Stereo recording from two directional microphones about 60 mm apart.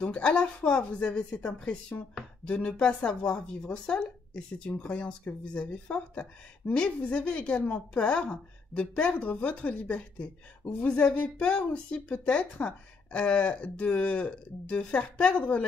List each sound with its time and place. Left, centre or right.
0.0 s speech: centre